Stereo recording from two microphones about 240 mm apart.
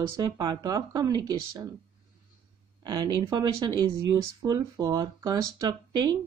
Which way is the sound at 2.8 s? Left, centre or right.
Centre.